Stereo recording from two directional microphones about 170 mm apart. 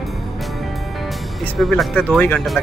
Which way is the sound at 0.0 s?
Centre (ahead or behind).